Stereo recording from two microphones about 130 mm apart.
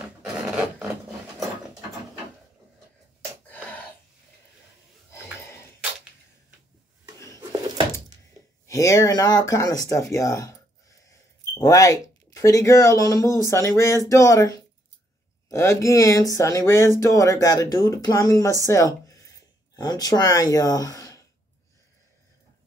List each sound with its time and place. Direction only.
0.0 s filing: 10° right (ahead or behind)
8.6 s speech: 25° left (ahead or behind)
15.5 s speech: 25° left (ahead or behind)